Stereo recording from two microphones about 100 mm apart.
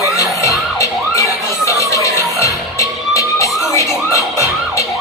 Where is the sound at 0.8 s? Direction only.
30° left (ahead or behind).